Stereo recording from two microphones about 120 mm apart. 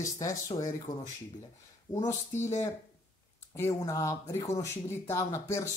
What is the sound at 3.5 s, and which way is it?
Speech, 25° left (ahead or behind).